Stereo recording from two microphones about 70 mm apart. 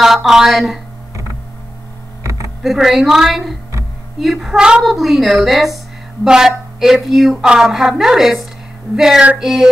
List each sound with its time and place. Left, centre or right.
0.0 s a woman's voice: centre
2.2 s computer keyboard: right
2.6 s a woman's voice: centre